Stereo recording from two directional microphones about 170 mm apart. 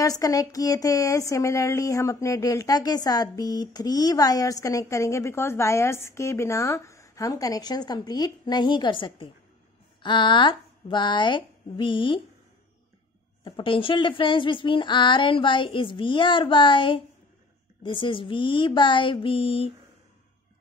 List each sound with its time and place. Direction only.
0.0 s speech: 20° left (ahead or behind)
13.4 s speech: 30° left (ahead or behind)